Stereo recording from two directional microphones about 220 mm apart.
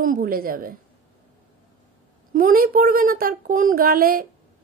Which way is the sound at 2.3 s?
40° right (ahead or behind).